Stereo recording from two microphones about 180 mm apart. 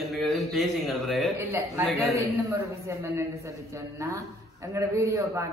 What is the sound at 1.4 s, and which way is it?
A man's voice, 15° right (ahead or behind).